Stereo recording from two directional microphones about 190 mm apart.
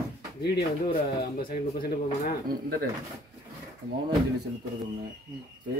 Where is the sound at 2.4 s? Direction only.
50° right (ahead or behind).